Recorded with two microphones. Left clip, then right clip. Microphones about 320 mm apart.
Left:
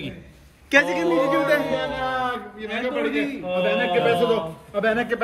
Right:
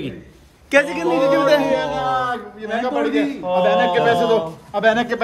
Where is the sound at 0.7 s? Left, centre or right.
Right.